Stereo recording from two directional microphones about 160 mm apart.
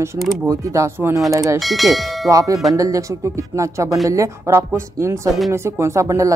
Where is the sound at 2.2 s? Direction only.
20° right (ahead or behind).